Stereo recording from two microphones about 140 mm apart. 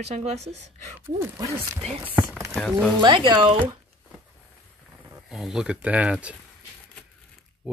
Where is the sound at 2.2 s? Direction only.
20° right (ahead or behind).